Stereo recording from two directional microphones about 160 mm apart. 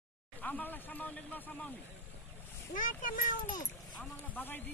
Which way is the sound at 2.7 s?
55° left (ahead or behind).